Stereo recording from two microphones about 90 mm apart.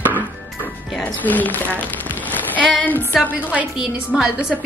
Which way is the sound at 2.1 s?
20° left (ahead or behind).